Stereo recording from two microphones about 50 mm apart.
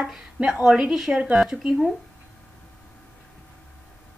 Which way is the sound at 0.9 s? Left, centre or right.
Centre.